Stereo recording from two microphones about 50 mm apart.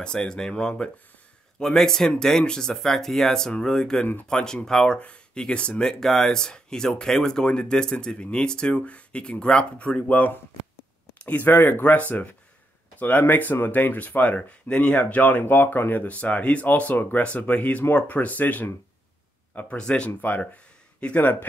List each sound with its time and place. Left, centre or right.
0.0 s speech: centre
4.4 s speech: left
4.6 s speech: centre
4.9 s speech: left
15.4 s speech: left
19.8 s speech: centre
20.1 s speech: left